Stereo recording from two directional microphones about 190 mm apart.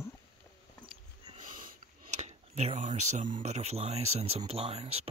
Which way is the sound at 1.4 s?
45° right (ahead or behind).